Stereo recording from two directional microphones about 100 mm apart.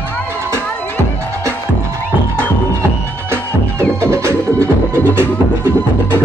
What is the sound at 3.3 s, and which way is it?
Music, 25° right (ahead or behind).